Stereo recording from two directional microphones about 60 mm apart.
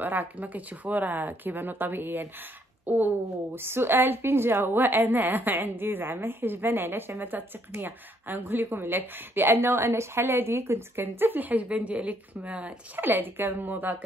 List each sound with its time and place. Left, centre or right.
0.0 s a woman's voice: right
12.9 s a woman's voice: right